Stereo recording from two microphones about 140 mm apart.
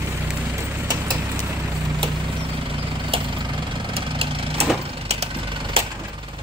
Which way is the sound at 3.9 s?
45° right (ahead or behind).